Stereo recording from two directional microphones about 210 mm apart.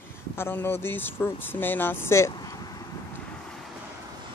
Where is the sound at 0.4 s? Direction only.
10° left (ahead or behind).